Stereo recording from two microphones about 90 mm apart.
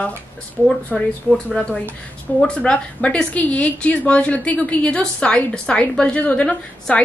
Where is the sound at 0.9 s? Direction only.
5° left (ahead or behind).